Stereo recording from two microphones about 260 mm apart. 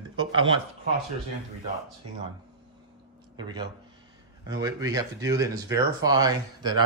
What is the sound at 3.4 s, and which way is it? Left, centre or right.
Speech, centre.